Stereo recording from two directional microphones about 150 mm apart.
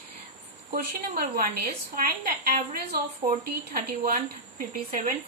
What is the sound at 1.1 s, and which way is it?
A woman's voice, 80° right.